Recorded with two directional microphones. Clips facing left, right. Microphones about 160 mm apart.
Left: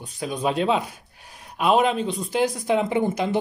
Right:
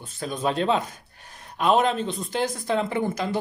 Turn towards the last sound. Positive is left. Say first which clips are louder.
# left 3 dB
turn(degrees=20)  # may be behind; listen again after turning